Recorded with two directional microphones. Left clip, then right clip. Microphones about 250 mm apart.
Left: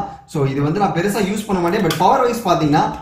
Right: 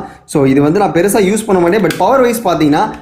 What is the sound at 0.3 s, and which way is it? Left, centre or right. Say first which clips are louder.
Speech: right 11 dB; centre.